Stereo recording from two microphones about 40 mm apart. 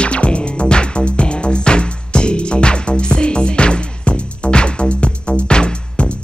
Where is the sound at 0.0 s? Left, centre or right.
Left.